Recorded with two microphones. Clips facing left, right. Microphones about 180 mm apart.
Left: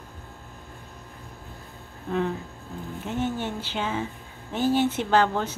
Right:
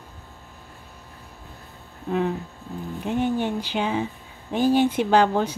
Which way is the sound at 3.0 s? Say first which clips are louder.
Right 5 dB; 15° right (ahead or behind).